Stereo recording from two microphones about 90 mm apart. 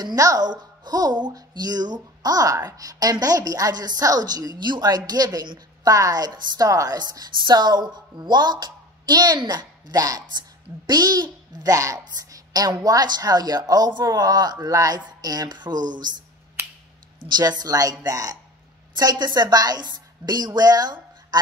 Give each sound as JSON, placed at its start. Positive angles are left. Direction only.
{"t": 0.0, "sound": "speech", "side_deg": -40}
{"t": 17.3, "sound": "a woman's voice", "side_deg": -50}